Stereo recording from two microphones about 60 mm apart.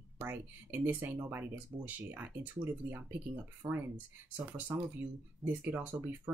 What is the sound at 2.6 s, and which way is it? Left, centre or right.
Speech, right.